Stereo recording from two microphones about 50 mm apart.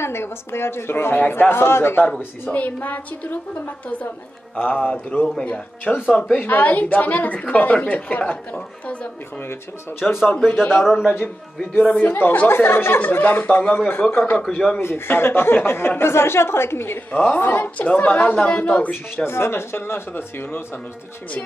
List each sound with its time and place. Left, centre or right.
0.0 s a woman's voice: left
2.5 s a woman's voice: left
6.3 s a woman's voice: left
8.5 s speech: centre
10.2 s a woman's voice: left
10.5 s a woman's voice: left
10.9 s a man's voice: centre
11.8 s speech: left
12.1 s a woman's voice: left
14.8 s a woman's voice: left
17.1 s a woman's voice: left
19.2 s speech: left